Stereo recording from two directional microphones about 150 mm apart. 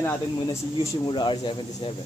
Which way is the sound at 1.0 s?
30° left (ahead or behind).